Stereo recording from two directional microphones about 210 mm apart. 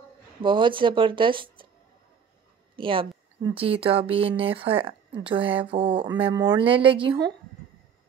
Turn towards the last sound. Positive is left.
turn(degrees=-20)  # may be behind; listen again after turning